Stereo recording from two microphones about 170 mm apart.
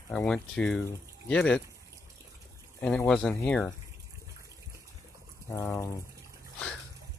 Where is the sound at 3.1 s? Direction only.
5° left (ahead or behind).